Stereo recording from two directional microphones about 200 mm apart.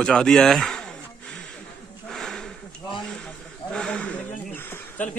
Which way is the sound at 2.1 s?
Centre (ahead or behind).